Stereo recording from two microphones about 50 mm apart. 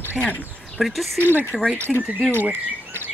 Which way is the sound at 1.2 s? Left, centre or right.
Right.